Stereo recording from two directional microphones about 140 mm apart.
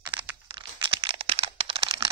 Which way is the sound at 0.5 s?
35° right (ahead or behind).